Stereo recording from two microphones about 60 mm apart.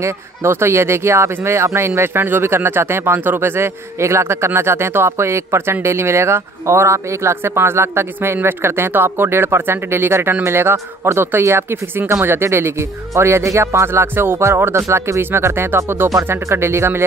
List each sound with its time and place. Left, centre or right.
0.0 s a man's voice: right